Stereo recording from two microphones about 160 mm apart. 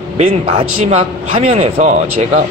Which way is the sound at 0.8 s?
35° right (ahead or behind).